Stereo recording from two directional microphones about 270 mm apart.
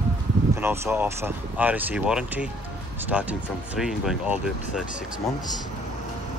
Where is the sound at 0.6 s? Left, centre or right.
Centre.